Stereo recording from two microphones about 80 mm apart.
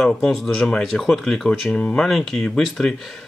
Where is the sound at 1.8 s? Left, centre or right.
Centre.